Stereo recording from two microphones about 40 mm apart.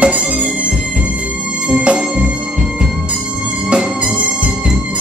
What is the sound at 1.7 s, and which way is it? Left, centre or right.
Music, right.